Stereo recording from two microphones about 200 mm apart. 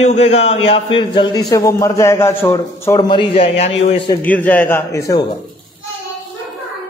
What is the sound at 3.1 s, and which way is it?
Speech, 25° left (ahead or behind).